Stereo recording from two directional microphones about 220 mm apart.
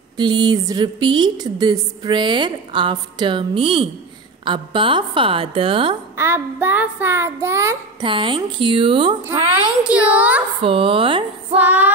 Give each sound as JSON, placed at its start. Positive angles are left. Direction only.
{"t": 0.2, "sound": "a woman's voice", "side_deg": -20}
{"t": 6.1, "sound": "child singing", "side_deg": -10}
{"t": 9.8, "sound": "child singing", "side_deg": -5}
{"t": 10.6, "sound": "a woman's voice", "side_deg": -25}
{"t": 11.5, "sound": "child singing", "side_deg": -10}